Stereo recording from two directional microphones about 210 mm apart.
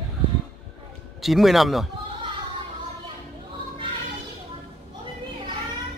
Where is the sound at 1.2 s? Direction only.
Centre (ahead or behind).